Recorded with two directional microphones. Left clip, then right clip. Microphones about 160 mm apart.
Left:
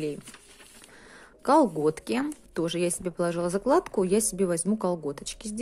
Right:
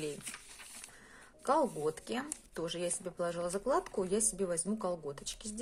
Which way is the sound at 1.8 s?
40° left (ahead or behind).